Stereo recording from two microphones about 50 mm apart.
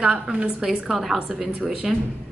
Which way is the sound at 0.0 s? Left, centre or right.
Centre.